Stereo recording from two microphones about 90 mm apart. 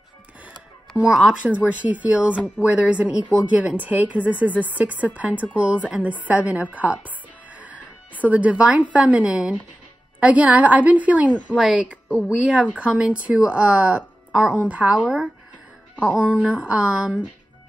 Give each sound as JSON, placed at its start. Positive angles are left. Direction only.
{"t": 0.5, "sound": "a woman's voice", "side_deg": -10}
{"t": 7.5, "sound": "music", "side_deg": -15}
{"t": 8.2, "sound": "a woman's voice", "side_deg": -15}